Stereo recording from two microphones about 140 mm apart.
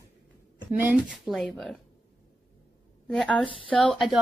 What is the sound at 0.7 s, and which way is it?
Speech, 10° right (ahead or behind).